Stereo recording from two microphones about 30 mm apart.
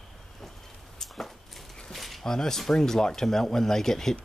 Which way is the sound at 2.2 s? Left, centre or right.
Centre.